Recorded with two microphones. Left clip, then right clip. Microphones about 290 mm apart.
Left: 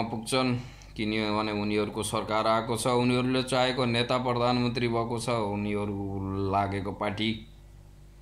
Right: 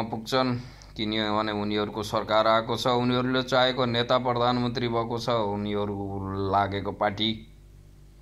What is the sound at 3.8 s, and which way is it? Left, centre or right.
Music, centre.